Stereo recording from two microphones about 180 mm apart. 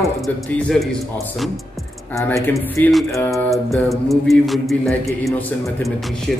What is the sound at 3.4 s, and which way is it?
A capella, centre (ahead or behind).